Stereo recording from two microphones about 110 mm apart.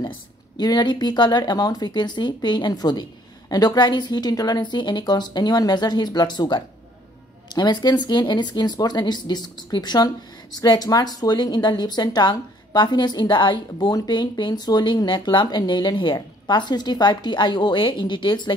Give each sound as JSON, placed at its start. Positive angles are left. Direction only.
{"t": 0.6, "sound": "speech", "side_deg": 40}